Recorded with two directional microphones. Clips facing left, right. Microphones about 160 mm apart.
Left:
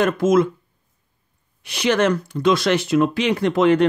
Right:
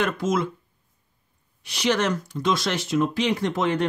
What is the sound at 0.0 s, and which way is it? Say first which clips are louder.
Speech: left 7 dB; 50° left (ahead or behind).